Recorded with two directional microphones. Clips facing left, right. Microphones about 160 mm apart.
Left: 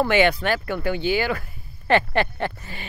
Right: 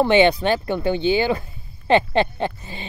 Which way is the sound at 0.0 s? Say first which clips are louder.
Right 4 dB; 20° right (ahead or behind).